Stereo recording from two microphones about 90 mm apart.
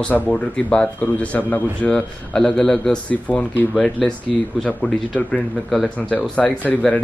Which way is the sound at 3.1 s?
20° left (ahead or behind).